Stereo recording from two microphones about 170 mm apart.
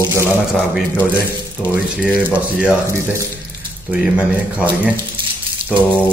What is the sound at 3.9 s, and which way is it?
Speech, 10° right (ahead or behind).